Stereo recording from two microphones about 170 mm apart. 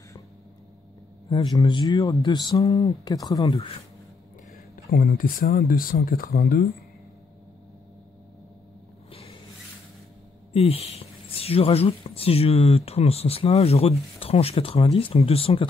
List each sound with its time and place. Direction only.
1.3 s speech: 25° left (ahead or behind)
2.6 s speech: 35° left (ahead or behind)
3.1 s speech: 20° left (ahead or behind)
5.0 s speech: 55° left (ahead or behind)
9.1 s a sound: 35° left (ahead or behind)
10.5 s speech: 35° left (ahead or behind)